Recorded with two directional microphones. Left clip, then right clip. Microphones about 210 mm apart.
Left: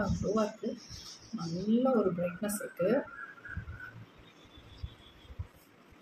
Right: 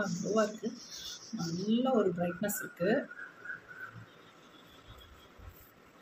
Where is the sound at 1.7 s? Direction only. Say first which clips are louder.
Left 2 dB; centre (ahead or behind).